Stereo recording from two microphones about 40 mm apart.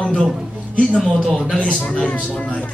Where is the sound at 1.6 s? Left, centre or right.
Left.